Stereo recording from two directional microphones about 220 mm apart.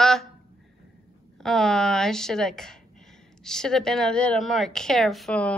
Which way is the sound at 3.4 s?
Centre (ahead or behind).